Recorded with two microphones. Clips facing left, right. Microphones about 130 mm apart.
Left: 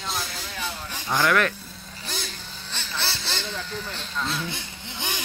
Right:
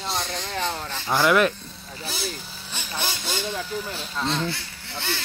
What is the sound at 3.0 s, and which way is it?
Vehicle, 15° right (ahead or behind).